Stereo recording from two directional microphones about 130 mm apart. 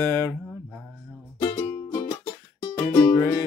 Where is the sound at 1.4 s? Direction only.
25° left (ahead or behind).